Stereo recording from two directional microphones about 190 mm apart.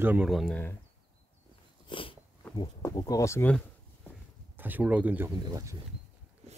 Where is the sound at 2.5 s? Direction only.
20° left (ahead or behind).